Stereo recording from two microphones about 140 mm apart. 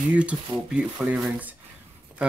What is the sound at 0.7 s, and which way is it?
Speech, 5° right (ahead or behind).